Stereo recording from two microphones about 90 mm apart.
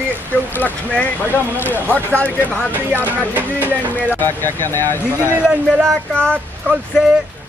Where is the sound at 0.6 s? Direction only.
15° left (ahead or behind).